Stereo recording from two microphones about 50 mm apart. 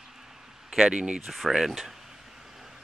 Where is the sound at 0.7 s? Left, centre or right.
Centre.